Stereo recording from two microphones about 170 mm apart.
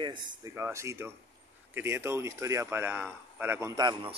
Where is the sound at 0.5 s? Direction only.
15° right (ahead or behind).